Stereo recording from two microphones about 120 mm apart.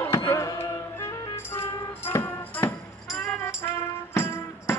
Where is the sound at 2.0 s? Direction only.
15° left (ahead or behind).